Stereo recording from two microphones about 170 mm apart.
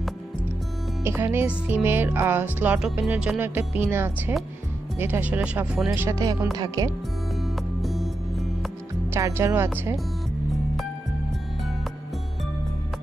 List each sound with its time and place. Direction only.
1.0 s speech: 15° right (ahead or behind)
5.9 s speech: 20° right (ahead or behind)
7.4 s music: centre (ahead or behind)
9.1 s speech: 15° right (ahead or behind)